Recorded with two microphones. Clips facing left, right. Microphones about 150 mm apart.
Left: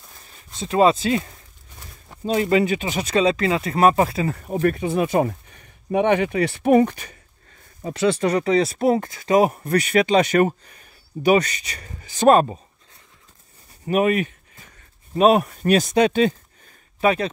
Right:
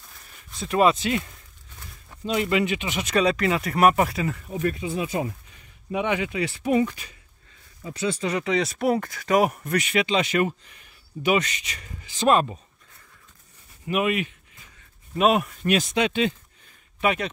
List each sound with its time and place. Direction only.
0.2 s speech: 30° left (ahead or behind)
4.6 s speech: 60° left (ahead or behind)
7.8 s speech: 70° left (ahead or behind)
8.3 s speech: 35° left (ahead or behind)
13.8 s speech: 40° left (ahead or behind)